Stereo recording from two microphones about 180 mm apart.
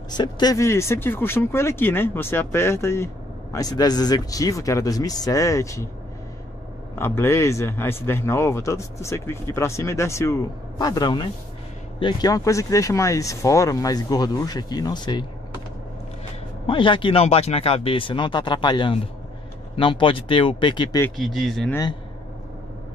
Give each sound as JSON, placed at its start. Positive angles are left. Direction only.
{"t": 0.1, "sound": "a man's voice", "side_deg": 20}
{"t": 7.0, "sound": "a man's voice", "side_deg": 15}
{"t": 16.6, "sound": "speech", "side_deg": 25}
{"t": 21.2, "sound": "speech", "side_deg": 0}